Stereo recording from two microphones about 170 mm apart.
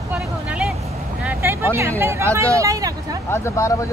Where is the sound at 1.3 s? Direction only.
15° right (ahead or behind).